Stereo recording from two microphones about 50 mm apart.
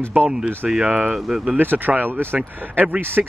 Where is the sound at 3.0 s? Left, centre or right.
Right.